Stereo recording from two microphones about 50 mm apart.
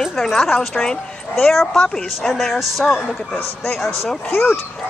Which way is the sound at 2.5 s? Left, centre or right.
Centre.